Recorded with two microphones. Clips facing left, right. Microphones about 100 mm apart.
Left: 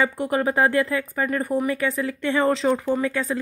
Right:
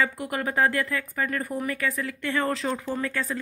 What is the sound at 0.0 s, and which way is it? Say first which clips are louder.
Speech: left 5 dB; 30° left (ahead or behind).